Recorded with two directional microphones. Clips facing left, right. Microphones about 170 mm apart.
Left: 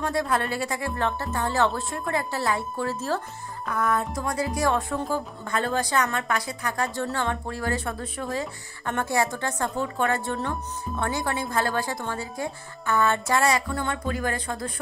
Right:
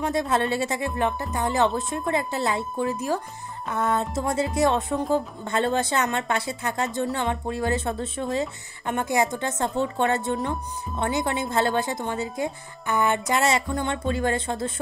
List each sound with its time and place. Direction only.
0.0 s a woman's voice: 20° right (ahead or behind)